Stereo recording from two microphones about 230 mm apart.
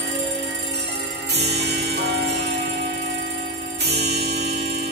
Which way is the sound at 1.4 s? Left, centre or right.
Right.